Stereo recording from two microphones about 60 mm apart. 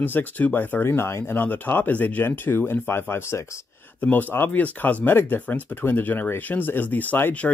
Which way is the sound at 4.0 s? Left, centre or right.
Left.